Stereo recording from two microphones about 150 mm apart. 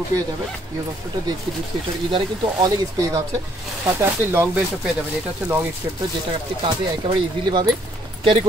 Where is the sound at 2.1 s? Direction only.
30° right (ahead or behind).